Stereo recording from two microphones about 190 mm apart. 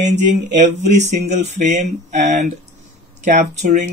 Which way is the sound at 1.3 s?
35° right (ahead or behind).